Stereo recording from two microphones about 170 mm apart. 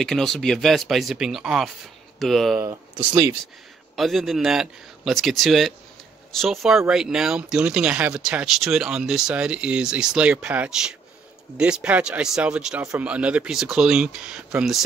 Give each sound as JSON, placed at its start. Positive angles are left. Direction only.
{"t": 0.0, "sound": "speech", "side_deg": 0}
{"t": 2.6, "sound": "speech", "side_deg": -15}
{"t": 3.9, "sound": "speech", "side_deg": 0}